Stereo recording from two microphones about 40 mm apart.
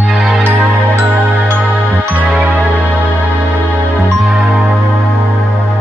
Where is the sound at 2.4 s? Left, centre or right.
Right.